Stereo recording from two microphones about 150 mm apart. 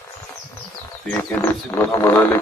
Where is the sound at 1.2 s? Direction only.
15° left (ahead or behind).